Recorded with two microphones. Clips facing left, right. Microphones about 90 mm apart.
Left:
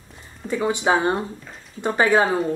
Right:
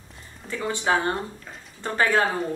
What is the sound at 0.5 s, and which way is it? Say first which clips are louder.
Speech: left 4 dB; 15° left (ahead or behind).